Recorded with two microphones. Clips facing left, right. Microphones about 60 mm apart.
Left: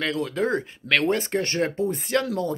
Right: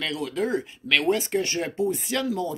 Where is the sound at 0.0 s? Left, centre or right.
Left.